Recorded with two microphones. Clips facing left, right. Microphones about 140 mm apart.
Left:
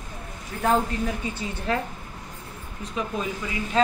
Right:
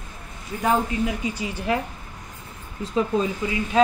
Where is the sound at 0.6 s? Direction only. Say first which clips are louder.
Right 1 dB; 10° right (ahead or behind).